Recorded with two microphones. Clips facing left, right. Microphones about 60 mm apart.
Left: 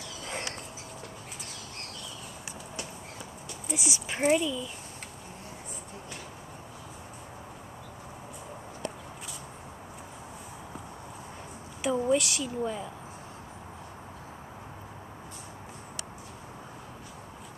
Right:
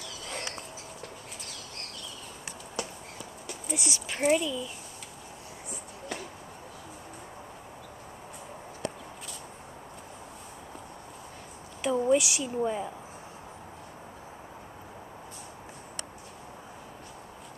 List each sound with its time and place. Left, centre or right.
3.6 s a sound: centre
3.9 s speech: centre
4.3 s speech: centre
11.8 s speech: centre